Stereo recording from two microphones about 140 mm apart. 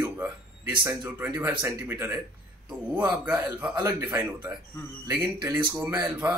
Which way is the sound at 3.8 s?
25° right (ahead or behind).